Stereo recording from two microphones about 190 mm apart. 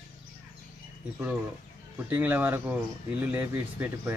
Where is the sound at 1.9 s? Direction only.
10° right (ahead or behind).